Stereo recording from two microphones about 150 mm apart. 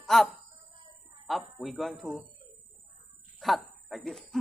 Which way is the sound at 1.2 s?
Centre (ahead or behind).